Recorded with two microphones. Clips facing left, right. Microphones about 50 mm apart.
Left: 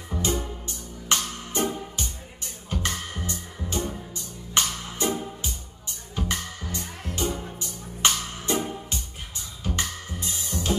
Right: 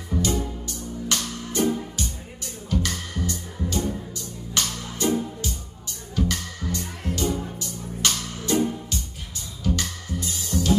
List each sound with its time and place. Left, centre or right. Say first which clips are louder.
0.2 s music: right 1 dB; left